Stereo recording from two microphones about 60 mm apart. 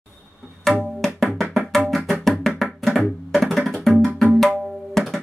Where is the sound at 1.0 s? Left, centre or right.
Centre.